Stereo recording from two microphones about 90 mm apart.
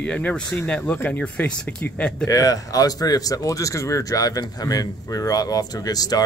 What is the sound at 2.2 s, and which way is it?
Speech, 40° left (ahead or behind).